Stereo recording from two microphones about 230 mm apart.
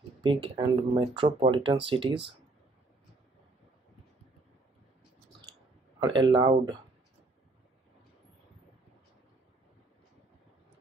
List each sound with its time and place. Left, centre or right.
0.2 s speech: right
5.9 s speech: centre